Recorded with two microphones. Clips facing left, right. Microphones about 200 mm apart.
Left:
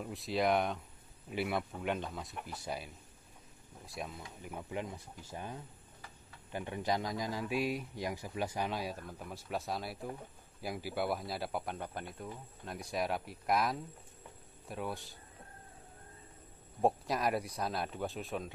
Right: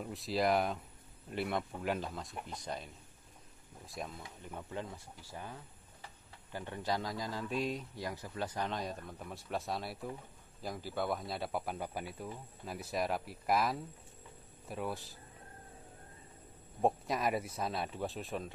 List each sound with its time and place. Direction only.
0.0 s speech: centre (ahead or behind)
16.8 s speech: centre (ahead or behind)